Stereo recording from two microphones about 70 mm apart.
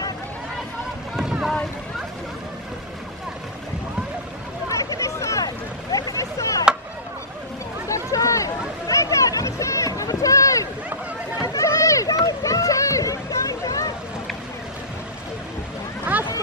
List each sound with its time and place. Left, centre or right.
4.6 s hubbub: left
5.4 s boat: left
7.9 s a sound: left